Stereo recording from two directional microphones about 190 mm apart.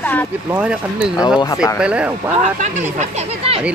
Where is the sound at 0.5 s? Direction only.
5° right (ahead or behind).